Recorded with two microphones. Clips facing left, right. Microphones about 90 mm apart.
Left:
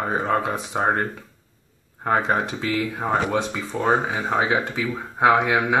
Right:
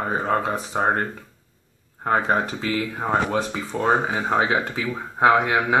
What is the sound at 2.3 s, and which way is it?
Speech, 45° right (ahead or behind).